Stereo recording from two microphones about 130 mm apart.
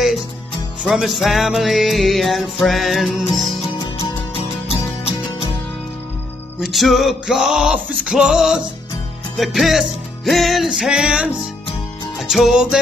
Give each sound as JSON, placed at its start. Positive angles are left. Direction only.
{"t": 0.8, "sound": "music", "side_deg": 0}
{"t": 3.7, "sound": "music", "side_deg": 35}
{"t": 6.6, "sound": "music", "side_deg": 0}